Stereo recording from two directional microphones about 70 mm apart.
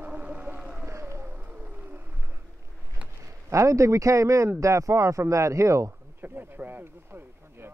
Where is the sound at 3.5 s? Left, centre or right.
Right.